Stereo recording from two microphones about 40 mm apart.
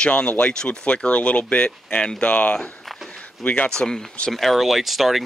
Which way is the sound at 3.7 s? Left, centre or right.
Centre.